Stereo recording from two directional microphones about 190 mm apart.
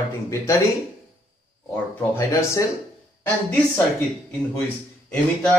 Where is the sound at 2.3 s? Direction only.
15° left (ahead or behind).